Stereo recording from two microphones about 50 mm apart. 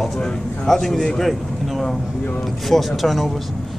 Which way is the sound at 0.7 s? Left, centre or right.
Centre.